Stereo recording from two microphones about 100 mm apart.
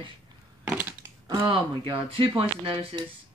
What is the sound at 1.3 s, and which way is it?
Speech, 60° right (ahead or behind).